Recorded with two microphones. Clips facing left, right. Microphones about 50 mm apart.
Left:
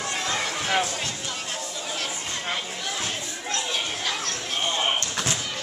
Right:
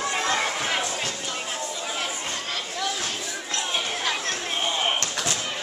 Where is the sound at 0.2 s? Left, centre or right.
Right.